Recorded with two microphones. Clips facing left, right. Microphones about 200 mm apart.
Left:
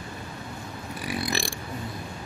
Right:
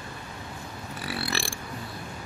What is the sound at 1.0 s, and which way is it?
Burping, 15° left (ahead or behind).